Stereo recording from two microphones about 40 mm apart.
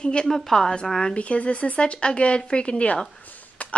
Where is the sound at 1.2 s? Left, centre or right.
Left.